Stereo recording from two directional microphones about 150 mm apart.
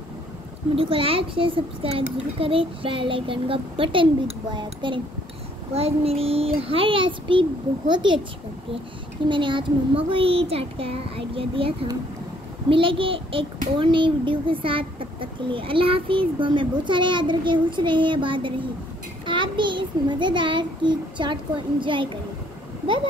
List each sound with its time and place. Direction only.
0.7 s speech: 40° right (ahead or behind)
5.7 s speech: 40° right (ahead or behind)
9.3 s speech: 35° right (ahead or behind)